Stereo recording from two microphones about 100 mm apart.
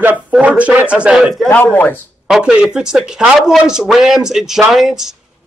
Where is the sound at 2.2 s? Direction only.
10° right (ahead or behind).